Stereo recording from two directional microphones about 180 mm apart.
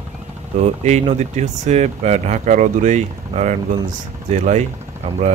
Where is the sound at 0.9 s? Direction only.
40° right (ahead or behind).